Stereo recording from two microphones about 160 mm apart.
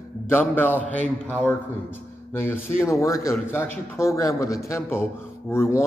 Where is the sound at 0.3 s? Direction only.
15° left (ahead or behind).